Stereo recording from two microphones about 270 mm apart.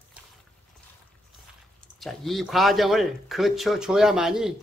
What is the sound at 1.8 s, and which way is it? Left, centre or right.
A woman's voice, centre.